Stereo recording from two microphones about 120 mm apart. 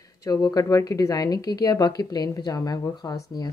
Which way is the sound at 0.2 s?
30° left (ahead or behind).